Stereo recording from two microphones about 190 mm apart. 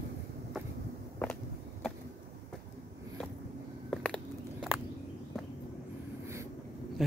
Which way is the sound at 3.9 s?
5° left (ahead or behind).